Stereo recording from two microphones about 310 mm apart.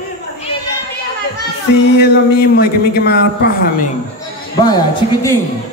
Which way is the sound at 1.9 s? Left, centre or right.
Left.